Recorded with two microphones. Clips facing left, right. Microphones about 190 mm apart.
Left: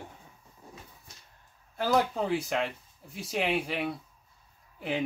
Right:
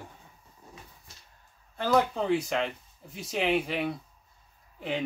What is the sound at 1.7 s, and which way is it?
Speech, 10° left (ahead or behind).